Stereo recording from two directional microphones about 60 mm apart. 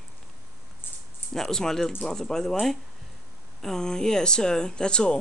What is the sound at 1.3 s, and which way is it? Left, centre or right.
Speech, centre.